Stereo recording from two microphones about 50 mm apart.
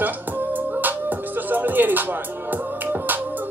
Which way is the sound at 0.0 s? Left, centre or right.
Right.